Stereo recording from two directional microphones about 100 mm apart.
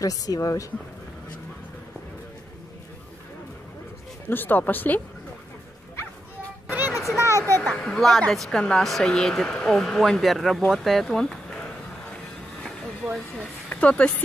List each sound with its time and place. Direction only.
0.0 s speech: 35° left (ahead or behind)
4.3 s speech: 20° left (ahead or behind)
7.0 s speech: 30° left (ahead or behind)
7.7 s speech: 5° left (ahead or behind)
13.4 s speech: 15° left (ahead or behind)